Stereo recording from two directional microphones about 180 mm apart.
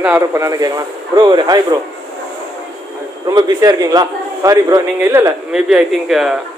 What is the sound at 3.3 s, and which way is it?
A man's voice, 20° right (ahead or behind).